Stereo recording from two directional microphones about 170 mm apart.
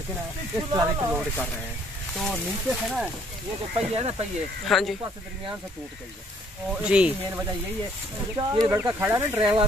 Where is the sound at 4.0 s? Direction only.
35° right (ahead or behind).